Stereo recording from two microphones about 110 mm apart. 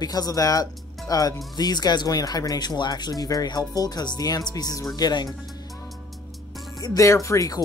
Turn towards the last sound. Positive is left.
turn(degrees=30)  # may be behind; listen again after turning